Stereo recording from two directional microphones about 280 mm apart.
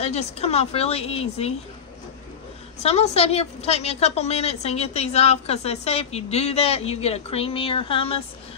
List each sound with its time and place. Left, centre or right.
0.0 s a woman's voice: left
2.8 s a woman's voice: left